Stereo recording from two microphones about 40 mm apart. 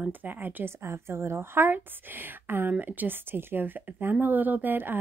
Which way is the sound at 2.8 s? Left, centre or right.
Right.